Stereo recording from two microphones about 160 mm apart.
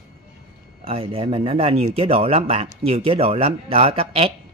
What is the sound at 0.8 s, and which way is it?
Speech, 35° right (ahead or behind).